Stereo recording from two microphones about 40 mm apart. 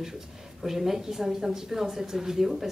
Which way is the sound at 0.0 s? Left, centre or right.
Centre.